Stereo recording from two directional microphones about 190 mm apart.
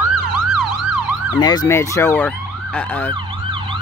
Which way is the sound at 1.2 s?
20° left (ahead or behind).